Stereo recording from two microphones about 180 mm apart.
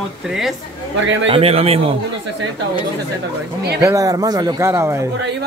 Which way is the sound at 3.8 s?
20° right (ahead or behind).